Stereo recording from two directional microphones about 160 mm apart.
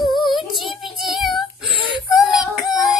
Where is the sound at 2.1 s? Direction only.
5° right (ahead or behind).